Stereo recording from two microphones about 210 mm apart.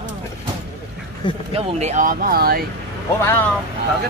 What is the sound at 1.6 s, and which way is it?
Speech, 30° right (ahead or behind).